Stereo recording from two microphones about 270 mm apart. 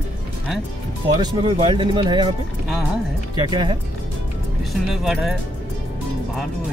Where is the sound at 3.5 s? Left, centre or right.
Centre.